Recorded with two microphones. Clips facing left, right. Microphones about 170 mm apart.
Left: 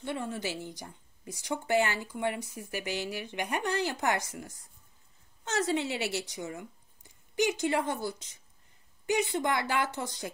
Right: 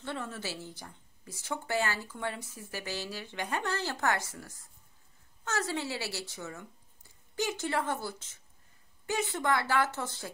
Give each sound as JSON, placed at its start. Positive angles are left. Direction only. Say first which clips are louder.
{"t": 0.0, "sound": "speech", "louder": "left 4 dB", "side_deg": 15}